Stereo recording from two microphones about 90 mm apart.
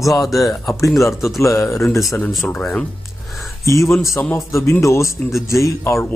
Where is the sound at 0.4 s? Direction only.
40° left (ahead or behind).